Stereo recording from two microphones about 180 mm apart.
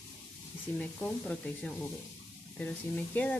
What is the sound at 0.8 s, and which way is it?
Speech, 10° left (ahead or behind).